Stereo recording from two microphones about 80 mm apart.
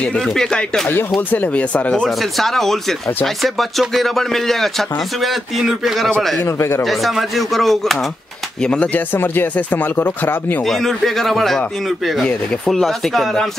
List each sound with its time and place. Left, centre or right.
0.2 s speech: centre
2.0 s a man's voice: centre
6.4 s speech: left
6.8 s a man's voice: centre
8.6 s speech: centre
9.1 s speech: left
10.6 s a man's voice: centre
12.6 s a man's voice: centre